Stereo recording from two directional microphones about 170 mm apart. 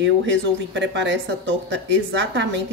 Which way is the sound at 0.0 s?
90° right.